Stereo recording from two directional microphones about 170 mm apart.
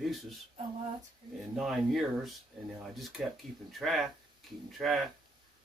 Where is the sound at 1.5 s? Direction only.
Centre (ahead or behind).